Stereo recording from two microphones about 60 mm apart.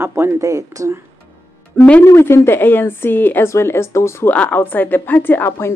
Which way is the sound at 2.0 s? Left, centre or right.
Left.